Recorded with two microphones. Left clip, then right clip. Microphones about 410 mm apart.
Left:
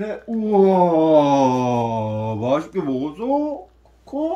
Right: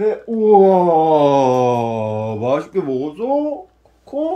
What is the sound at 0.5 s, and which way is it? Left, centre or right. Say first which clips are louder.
Wail: right 5 dB; centre.